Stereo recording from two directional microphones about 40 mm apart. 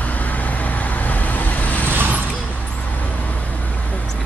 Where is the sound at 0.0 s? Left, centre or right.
Left.